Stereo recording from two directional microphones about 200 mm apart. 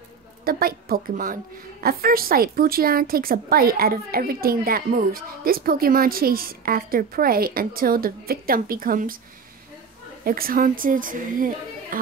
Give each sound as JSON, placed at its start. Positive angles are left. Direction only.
{"t": 0.5, "sound": "a woman's voice", "side_deg": -45}
{"t": 10.2, "sound": "a woman's voice", "side_deg": -45}